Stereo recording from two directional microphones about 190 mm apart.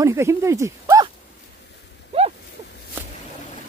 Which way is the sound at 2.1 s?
30° right (ahead or behind).